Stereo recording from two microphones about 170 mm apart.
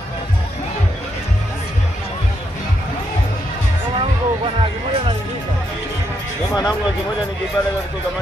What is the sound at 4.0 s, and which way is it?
Speech, 30° right (ahead or behind).